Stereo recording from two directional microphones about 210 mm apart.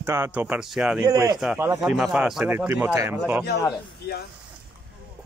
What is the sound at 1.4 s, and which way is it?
Speech, 5° right (ahead or behind).